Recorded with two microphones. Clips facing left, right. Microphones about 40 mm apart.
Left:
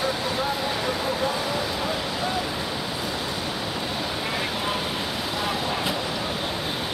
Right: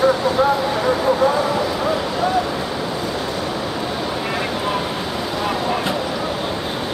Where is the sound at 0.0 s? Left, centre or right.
Right.